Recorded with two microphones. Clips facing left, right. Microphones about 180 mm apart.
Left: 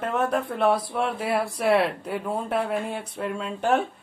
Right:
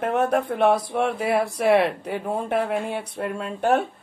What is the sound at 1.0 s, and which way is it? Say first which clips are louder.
Speech: right 3 dB; 60° right (ahead or behind).